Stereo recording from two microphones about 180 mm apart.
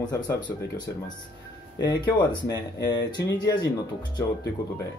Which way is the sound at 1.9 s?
25° left (ahead or behind).